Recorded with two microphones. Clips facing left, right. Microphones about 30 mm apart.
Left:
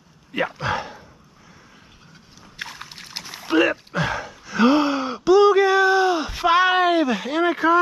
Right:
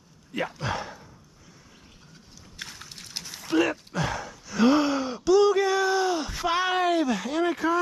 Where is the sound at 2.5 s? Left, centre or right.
Left.